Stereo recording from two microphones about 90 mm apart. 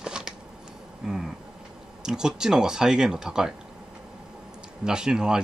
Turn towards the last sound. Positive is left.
turn(degrees=-10)  # may be behind; listen again after turning